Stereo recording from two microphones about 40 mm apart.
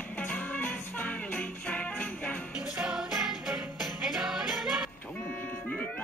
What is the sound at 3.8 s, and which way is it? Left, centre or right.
Jingle bell, centre.